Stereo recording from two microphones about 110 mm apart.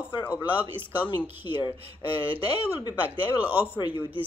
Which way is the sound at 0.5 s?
15° right (ahead or behind).